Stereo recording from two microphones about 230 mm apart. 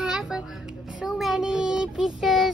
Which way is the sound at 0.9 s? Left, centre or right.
Centre.